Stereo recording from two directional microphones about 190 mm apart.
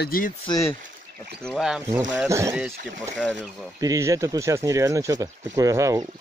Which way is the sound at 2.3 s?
15° right (ahead or behind).